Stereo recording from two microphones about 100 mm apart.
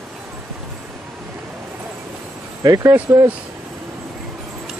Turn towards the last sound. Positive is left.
turn(degrees=-35)  # may be behind; listen again after turning